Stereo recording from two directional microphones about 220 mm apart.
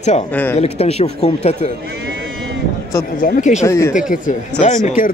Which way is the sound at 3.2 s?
35° left (ahead or behind).